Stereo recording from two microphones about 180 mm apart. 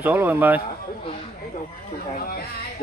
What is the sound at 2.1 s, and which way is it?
Speech, 55° left (ahead or behind).